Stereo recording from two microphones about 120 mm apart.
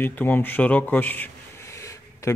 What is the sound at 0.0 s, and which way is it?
Speech, 15° left (ahead or behind).